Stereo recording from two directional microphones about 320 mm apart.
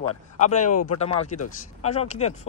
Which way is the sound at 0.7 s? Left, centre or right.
Left.